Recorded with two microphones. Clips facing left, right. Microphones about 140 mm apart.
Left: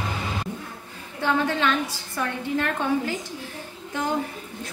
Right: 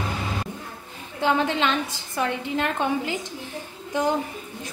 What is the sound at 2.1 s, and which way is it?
A woman's voice, 20° right (ahead or behind).